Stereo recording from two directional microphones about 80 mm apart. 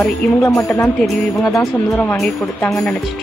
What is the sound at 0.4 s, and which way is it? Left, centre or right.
Speech, left.